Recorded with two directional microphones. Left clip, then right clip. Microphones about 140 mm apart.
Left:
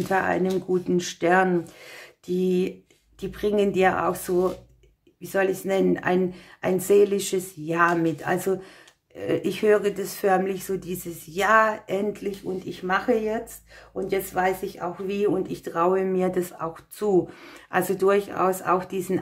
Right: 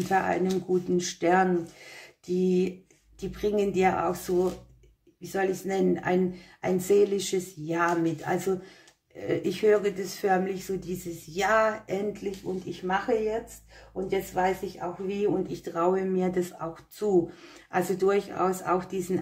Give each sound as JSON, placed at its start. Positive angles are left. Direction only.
{"t": 0.1, "sound": "speech", "side_deg": 35}